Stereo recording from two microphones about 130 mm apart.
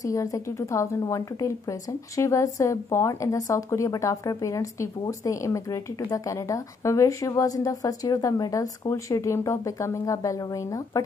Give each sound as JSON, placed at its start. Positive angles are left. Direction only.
{"t": 0.0, "sound": "a woman's voice", "side_deg": 25}